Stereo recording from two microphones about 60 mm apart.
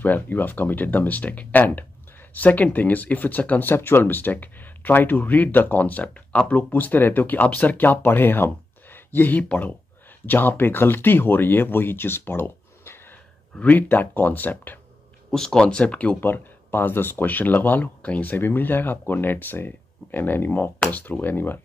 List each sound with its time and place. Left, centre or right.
0.0 s speech: left
15.3 s speech: centre
16.3 s speech: left
18.4 s speech: left